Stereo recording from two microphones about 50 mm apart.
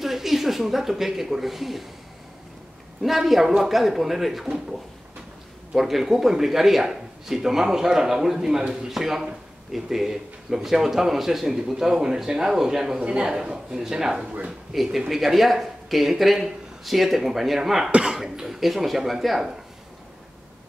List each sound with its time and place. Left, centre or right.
0.0 s speech: centre
3.0 s speech: centre
5.8 s a man's voice: centre
13.0 s a man's voice: right; by 19.5 s centre